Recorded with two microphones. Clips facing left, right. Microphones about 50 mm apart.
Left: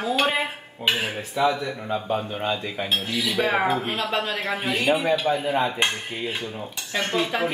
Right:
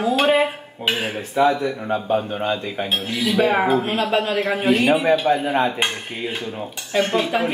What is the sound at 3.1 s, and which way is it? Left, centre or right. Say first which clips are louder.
Speech: right 4 dB; right.